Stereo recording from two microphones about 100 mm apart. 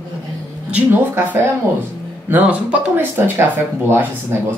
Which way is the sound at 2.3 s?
20° right (ahead or behind).